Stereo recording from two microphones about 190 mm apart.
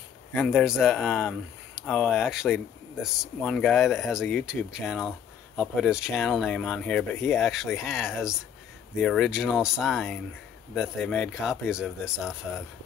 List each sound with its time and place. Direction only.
0.3 s speech: centre (ahead or behind)